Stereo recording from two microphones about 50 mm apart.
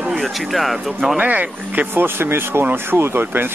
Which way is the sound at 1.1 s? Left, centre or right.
Right.